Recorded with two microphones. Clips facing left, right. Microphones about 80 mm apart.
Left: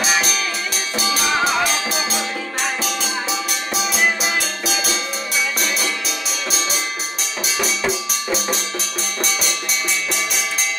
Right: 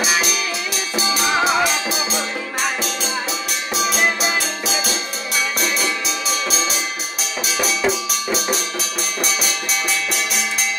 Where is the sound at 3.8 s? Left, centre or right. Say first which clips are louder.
Right 1 dB; centre.